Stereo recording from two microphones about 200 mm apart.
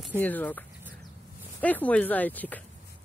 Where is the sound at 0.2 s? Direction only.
10° left (ahead or behind).